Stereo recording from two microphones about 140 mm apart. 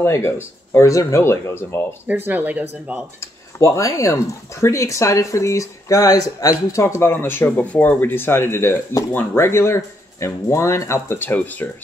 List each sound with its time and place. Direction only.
0.0 s speech: 20° left (ahead or behind)
2.0 s speech: 15° right (ahead or behind)
3.2 s speech: 20° left (ahead or behind)